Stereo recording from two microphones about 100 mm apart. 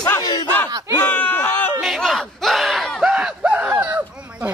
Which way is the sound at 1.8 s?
Centre (ahead or behind).